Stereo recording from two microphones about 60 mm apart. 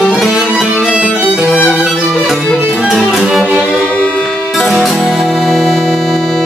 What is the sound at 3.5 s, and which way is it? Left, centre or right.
Music, centre.